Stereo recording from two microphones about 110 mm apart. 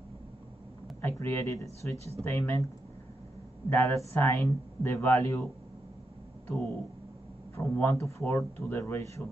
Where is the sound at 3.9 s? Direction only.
30° left (ahead or behind).